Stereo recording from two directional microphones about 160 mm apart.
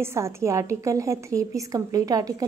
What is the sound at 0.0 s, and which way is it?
A woman's voice, 15° right (ahead or behind).